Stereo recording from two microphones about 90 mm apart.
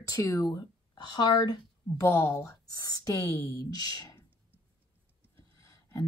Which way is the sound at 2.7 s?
45° left (ahead or behind).